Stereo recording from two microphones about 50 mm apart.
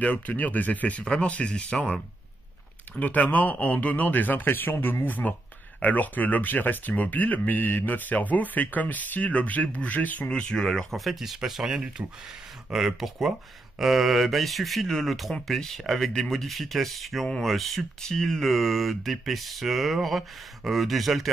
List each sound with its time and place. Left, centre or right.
0.0 s speech: left
3.0 s speech: left
10.3 s speech: centre
10.9 s speech: centre